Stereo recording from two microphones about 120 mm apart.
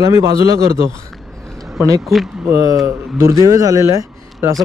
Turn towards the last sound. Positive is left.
turn(degrees=-30)  # may be behind; listen again after turning